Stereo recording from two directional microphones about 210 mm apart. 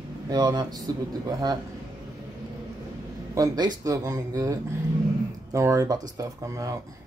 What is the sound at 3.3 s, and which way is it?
Speech, 20° right (ahead or behind).